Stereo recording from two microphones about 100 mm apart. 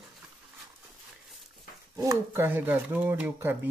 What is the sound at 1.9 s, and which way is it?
Speech, 25° right (ahead or behind).